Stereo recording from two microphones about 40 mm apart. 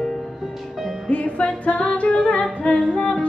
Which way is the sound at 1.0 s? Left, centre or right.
Left.